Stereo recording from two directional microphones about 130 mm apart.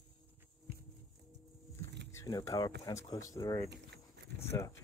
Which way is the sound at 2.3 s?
30° left (ahead or behind).